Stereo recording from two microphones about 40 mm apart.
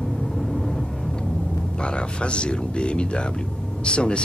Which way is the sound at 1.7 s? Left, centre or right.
Left.